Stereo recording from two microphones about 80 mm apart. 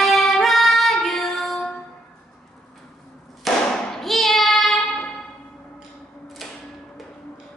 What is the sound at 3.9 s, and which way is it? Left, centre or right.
Child singing, centre.